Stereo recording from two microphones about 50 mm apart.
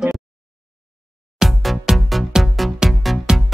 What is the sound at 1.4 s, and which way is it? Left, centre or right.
Music, centre.